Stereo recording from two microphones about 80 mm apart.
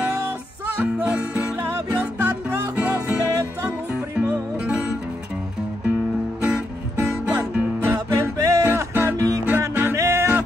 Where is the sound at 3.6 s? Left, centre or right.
Right.